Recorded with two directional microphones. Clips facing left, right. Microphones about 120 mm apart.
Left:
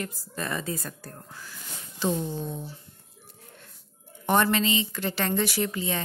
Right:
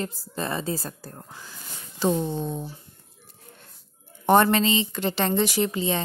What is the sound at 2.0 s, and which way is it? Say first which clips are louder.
Speech: right 4 dB; 35° right (ahead or behind).